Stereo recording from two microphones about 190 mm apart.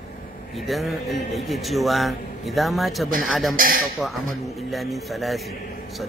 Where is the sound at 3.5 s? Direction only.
50° right (ahead or behind).